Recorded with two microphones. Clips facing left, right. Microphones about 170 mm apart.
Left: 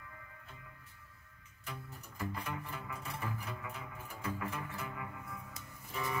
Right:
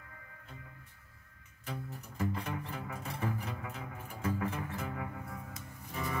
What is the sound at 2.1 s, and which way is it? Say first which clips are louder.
Music: right 4 dB; 40° right (ahead or behind).